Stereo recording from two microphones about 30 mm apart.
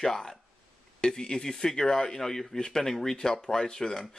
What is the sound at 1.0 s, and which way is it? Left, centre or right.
Speech, left.